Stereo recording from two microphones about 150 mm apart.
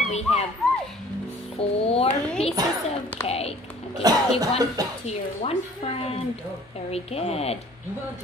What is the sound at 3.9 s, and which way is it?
Speech, 25° right (ahead or behind).